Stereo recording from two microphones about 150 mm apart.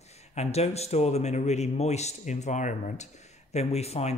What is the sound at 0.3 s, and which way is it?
Speech, 45° left (ahead or behind).